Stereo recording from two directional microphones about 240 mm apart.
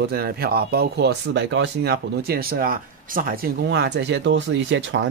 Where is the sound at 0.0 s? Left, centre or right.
Right.